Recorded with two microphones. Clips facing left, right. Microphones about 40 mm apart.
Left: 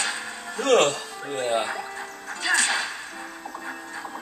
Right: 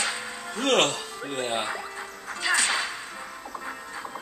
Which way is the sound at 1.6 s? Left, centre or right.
Centre.